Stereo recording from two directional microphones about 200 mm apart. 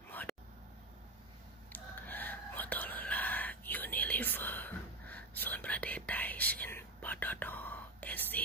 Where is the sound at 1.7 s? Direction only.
10° left (ahead or behind).